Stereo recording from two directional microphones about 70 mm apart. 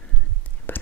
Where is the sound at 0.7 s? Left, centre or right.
Left.